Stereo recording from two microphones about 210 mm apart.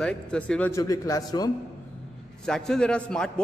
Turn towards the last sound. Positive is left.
turn(degrees=5)  # may be behind; listen again after turning